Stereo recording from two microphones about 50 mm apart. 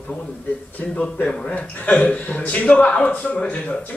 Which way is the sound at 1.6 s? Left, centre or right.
Left.